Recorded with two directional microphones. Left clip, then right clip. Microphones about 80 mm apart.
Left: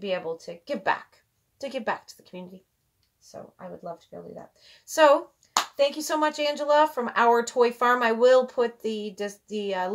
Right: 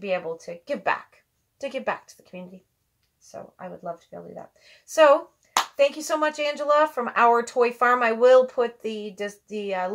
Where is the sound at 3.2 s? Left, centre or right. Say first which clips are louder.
Right 3 dB; centre.